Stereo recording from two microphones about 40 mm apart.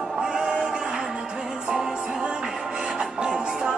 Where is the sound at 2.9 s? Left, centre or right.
Right.